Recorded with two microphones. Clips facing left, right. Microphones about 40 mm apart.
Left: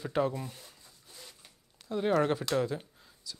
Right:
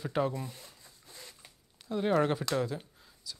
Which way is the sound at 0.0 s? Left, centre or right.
Centre.